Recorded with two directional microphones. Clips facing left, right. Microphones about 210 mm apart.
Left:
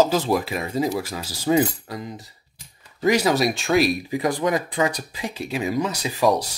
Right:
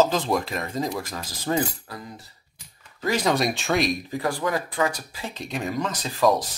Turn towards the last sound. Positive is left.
turn(degrees=10)  # may be behind; listen again after turning